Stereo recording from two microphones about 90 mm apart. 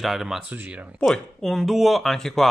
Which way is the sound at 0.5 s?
15° right (ahead or behind).